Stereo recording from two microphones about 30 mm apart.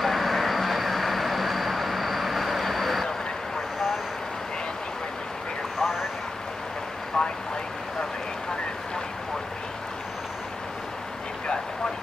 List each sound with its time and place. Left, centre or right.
0.0 s vehicle: centre
5.8 s vehicle: centre
7.2 s vehicle: left